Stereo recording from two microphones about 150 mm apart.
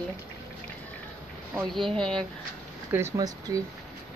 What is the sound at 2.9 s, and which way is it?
Speech, 20° right (ahead or behind).